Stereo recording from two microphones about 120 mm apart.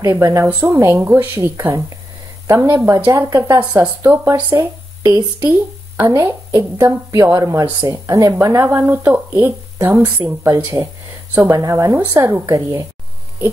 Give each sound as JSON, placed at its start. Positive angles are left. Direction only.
{"t": 0.0, "sound": "speech", "side_deg": -30}
{"t": 4.5, "sound": "speech", "side_deg": -35}